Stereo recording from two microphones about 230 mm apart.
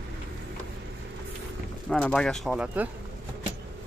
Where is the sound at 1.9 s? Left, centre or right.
Centre.